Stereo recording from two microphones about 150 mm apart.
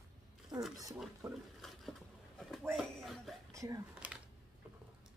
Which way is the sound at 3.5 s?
20° right (ahead or behind).